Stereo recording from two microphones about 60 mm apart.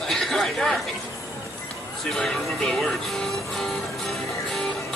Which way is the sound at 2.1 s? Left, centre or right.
Centre.